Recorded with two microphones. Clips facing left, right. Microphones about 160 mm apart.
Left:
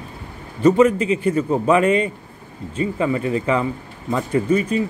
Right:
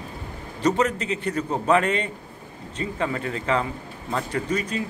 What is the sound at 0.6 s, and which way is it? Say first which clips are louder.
A man's voice: left 8 dB; 5° left (ahead or behind).